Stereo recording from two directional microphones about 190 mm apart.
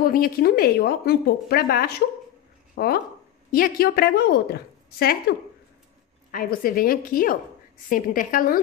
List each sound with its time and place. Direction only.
0.0 s a woman's voice: 50° left (ahead or behind)
6.3 s speech: 50° left (ahead or behind)